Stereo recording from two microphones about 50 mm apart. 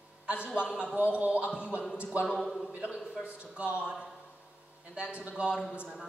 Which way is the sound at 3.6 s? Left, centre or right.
Right.